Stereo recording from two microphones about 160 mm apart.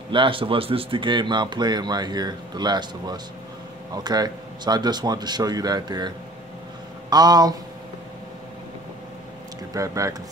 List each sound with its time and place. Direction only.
0.1 s a man's voice: 30° right (ahead or behind)
9.8 s a man's voice: 20° right (ahead or behind)